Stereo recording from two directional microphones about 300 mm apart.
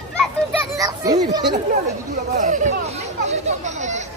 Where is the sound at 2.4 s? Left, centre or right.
Right.